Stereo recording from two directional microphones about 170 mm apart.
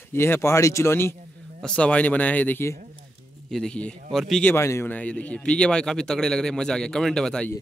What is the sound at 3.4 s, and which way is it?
Speech, 5° left (ahead or behind).